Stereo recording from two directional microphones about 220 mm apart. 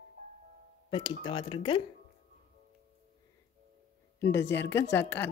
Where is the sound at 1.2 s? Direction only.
20° left (ahead or behind).